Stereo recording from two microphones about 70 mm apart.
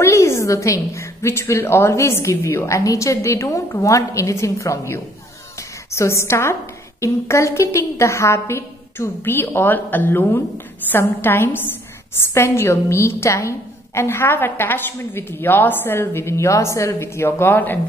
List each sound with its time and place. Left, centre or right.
0.0 s a woman's voice: left
5.6 s a sound: left
7.0 s a woman's voice: left